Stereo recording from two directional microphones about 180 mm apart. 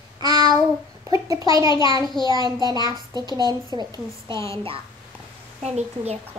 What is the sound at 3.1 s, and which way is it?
A child's voice, 25° right (ahead or behind).